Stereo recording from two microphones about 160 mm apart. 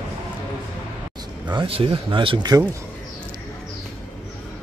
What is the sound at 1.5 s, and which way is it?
Speech, 30° right (ahead or behind).